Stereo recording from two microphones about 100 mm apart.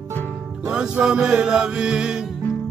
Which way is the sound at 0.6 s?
10° right (ahead or behind).